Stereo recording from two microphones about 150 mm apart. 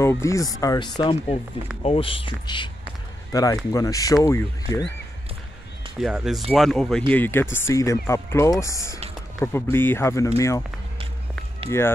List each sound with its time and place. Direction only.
0.0 s speech: 20° left (ahead or behind)
1.8 s a man's voice: 40° left (ahead or behind); by 4.8 s 20° left (ahead or behind)
5.9 s speech: 5° right (ahead or behind)
7.1 s speech: 15° left (ahead or behind)